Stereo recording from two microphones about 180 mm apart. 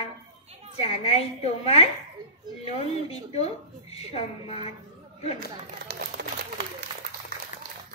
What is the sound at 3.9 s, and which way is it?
Speech, 35° left (ahead or behind).